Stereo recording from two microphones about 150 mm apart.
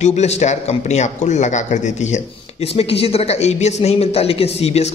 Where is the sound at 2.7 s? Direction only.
40° left (ahead or behind).